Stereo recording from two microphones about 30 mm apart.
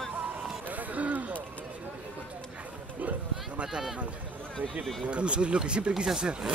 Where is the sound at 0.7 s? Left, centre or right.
Right.